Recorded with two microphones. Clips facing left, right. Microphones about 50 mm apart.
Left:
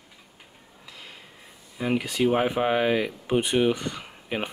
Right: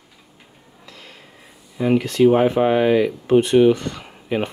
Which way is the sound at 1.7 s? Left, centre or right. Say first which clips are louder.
Right 8 dB; centre.